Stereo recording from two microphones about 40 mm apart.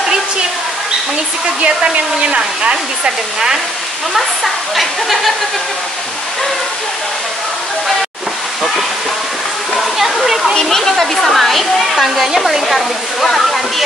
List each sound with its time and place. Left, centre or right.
1.6 s speech: right
4.7 s speech: centre
9.8 s speech: centre
10.5 s speech: centre
13.2 s speech: centre